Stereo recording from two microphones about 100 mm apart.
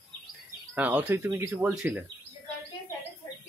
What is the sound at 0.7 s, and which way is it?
Speech, 15° right (ahead or behind).